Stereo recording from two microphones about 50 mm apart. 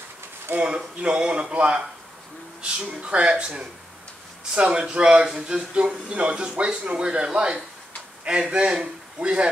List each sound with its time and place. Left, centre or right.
0.6 s speech: right